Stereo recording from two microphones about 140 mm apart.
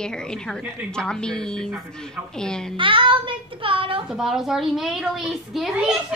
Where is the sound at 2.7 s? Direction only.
35° right (ahead or behind).